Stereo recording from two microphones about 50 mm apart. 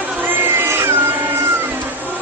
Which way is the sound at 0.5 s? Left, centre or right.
Right.